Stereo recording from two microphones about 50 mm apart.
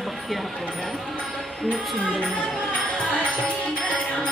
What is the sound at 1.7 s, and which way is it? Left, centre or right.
Speech, left.